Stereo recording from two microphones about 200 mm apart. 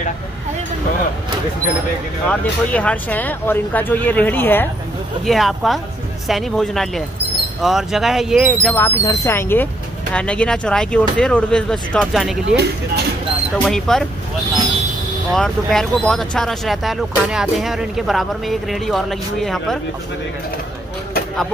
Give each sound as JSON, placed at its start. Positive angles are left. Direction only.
{"t": 2.2, "sound": "speech", "side_deg": 5}
{"t": 5.2, "sound": "speech", "side_deg": 0}
{"t": 8.7, "sound": "speech", "side_deg": 15}
{"t": 12.4, "sound": "speech", "side_deg": -55}
{"t": 13.7, "sound": "speech", "side_deg": 5}
{"t": 15.3, "sound": "speech", "side_deg": 0}